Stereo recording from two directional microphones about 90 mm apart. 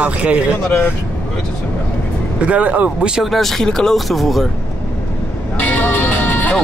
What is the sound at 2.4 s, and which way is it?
Speech, 15° right (ahead or behind).